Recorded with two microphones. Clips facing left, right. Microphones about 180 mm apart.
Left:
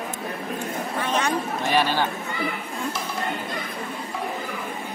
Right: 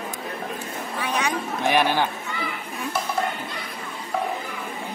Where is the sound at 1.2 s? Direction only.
15° right (ahead or behind).